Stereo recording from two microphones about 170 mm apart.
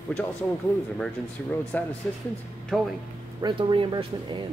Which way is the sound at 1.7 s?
10° left (ahead or behind).